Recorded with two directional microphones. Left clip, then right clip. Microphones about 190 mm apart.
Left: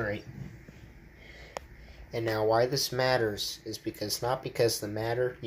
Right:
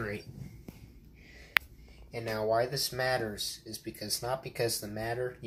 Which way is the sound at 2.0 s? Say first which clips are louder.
Left 5 dB; 30° left (ahead or behind).